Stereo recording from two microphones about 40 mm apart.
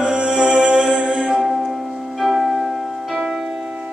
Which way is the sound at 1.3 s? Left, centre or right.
Centre.